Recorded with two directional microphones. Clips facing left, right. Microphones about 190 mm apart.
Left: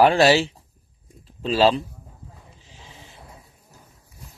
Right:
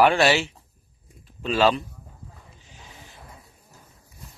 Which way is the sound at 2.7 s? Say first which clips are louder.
Left 1 dB; 25° left (ahead or behind).